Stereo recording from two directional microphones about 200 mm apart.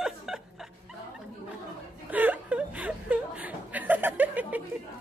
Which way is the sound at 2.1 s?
10° right (ahead or behind).